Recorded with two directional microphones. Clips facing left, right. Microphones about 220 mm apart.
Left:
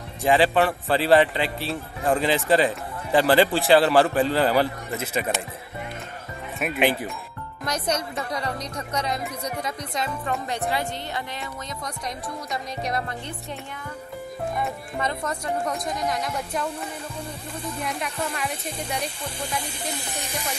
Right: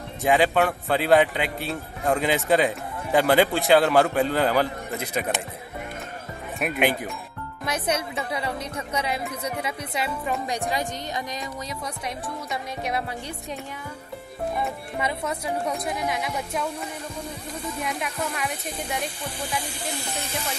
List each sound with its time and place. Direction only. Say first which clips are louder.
0.2 s a man's voice: left 1 dB; centre (ahead or behind)
6.6 s a man's voice: left 1 dB; centre (ahead or behind)
14.6 s a man's voice: even; 10° right (ahead or behind)
17.7 s a man's voice: even; centre (ahead or behind)
20.0 s speech: right 1 dB; 15° left (ahead or behind)